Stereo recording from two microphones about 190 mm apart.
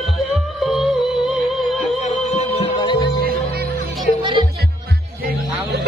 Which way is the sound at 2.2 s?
30° left (ahead or behind).